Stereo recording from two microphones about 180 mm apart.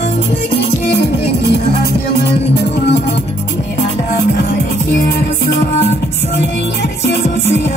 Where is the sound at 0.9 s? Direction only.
65° left (ahead or behind).